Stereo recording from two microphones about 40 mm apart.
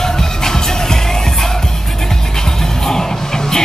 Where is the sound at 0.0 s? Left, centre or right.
Centre.